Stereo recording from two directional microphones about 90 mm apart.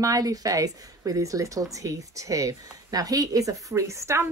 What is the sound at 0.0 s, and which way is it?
A woman's voice, 40° right (ahead or behind).